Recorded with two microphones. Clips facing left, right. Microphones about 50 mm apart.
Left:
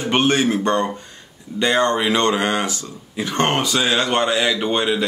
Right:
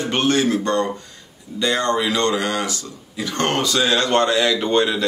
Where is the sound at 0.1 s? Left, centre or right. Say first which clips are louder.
Left 2 dB; left.